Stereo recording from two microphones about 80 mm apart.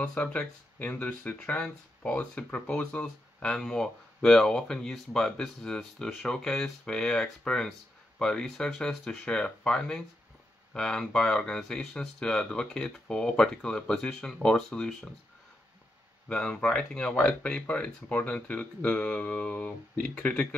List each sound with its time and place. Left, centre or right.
0.0 s speech: centre
16.3 s speech: centre